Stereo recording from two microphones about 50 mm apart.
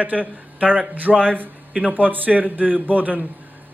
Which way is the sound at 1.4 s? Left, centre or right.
Right.